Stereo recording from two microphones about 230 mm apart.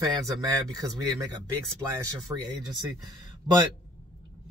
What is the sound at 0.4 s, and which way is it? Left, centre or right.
Speech, centre.